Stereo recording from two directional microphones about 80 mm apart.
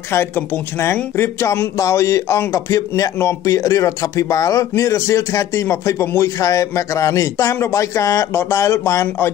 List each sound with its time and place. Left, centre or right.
0.9 s speech: left